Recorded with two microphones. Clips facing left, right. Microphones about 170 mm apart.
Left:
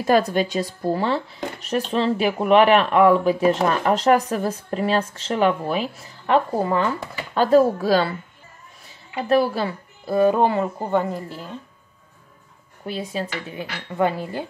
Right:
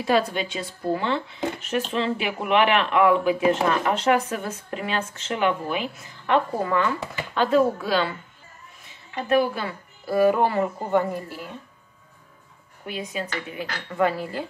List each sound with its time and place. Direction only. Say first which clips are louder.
0.0 s speech: left 4 dB; 45° left (ahead or behind)
9.3 s speech: left 2 dB; 35° left (ahead or behind)
12.8 s speech: left 3 dB; 35° left (ahead or behind)
13.9 s speech: left 1 dB; 20° left (ahead or behind)